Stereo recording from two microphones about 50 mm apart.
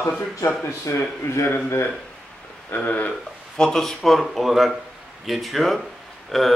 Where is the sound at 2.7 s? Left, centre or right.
Left.